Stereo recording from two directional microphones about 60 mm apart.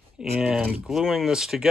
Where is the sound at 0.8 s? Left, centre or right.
Centre.